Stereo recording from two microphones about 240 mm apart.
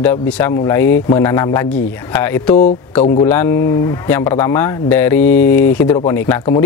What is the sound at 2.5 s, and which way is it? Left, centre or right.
Speech, left.